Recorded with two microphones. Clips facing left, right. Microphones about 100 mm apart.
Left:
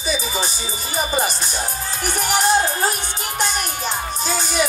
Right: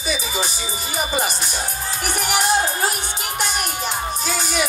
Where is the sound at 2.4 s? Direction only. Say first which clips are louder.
Left 2 dB; 35° left (ahead or behind).